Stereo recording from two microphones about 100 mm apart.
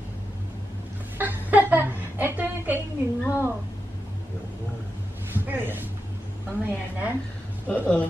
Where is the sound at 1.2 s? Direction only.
20° right (ahead or behind).